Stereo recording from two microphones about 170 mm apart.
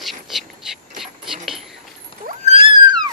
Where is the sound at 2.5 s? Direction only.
30° right (ahead or behind).